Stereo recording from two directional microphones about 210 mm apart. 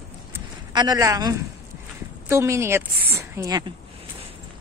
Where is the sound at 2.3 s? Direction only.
10° right (ahead or behind).